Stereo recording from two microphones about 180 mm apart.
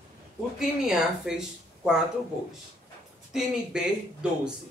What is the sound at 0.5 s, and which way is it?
Speech, centre (ahead or behind).